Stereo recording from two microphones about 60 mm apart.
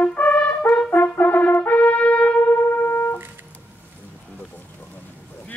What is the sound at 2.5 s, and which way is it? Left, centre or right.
Music, left.